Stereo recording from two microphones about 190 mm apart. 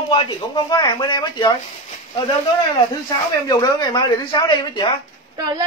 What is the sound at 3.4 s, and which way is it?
Speech, 20° left (ahead or behind).